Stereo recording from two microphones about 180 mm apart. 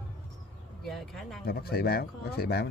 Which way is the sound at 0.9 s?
Centre (ahead or behind).